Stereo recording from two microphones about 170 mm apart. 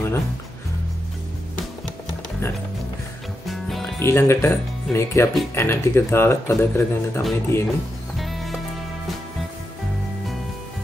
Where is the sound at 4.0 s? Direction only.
15° left (ahead or behind).